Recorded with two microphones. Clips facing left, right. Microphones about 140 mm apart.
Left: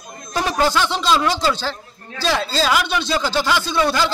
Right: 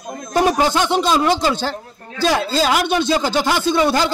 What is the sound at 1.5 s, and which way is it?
Speech, 50° right (ahead or behind).